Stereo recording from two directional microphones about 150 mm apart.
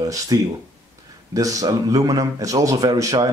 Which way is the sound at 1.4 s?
25° right (ahead or behind).